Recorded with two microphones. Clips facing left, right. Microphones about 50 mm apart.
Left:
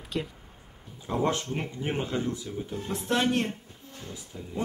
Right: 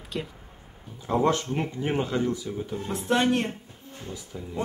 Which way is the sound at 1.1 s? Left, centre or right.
Right.